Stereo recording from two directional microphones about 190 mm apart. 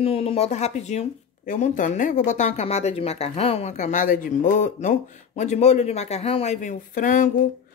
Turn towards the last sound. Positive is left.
turn(degrees=45)  # may be behind; listen again after turning